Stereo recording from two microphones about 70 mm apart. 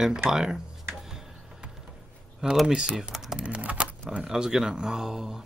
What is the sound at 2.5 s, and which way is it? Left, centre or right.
Speech, centre.